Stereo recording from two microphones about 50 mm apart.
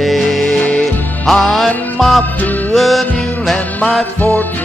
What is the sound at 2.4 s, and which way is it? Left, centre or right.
Music, left.